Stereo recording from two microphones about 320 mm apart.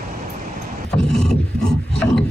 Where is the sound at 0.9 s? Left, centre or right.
Centre.